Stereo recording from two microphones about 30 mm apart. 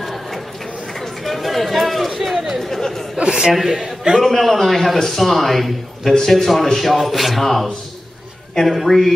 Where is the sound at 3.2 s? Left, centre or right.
Right.